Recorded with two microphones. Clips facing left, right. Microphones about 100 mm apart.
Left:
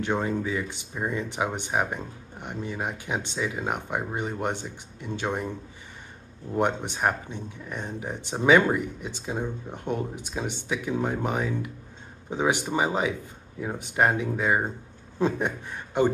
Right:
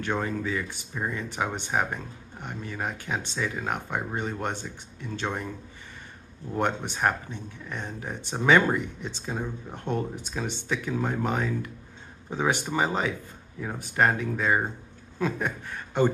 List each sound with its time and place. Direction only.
0.0 s speech: 15° left (ahead or behind)
6.5 s a man's voice: 15° left (ahead or behind)